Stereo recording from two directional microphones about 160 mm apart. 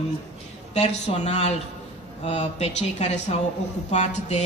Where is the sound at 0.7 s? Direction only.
45° left (ahead or behind).